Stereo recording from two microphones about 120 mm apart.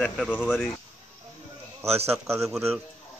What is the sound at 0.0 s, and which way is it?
Speech, 10° left (ahead or behind).